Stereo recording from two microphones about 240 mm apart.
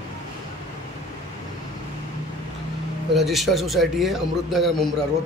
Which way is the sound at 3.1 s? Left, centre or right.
Centre.